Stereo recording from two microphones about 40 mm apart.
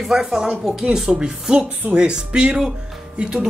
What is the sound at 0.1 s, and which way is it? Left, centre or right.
A woman's voice, centre.